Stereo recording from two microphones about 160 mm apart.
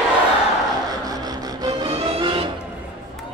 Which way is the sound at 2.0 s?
35° right (ahead or behind).